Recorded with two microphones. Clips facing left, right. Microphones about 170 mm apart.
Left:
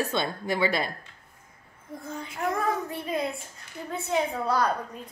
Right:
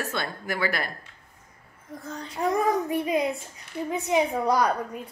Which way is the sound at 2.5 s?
15° right (ahead or behind).